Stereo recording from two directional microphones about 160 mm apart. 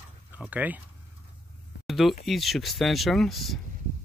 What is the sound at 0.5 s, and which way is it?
Speech, 10° right (ahead or behind).